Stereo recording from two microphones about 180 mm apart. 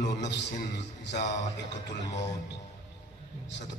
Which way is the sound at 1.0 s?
40° left (ahead or behind).